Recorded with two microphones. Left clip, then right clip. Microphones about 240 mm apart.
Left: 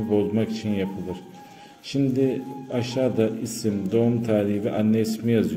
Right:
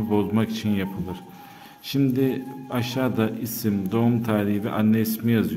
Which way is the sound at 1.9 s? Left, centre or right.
Right.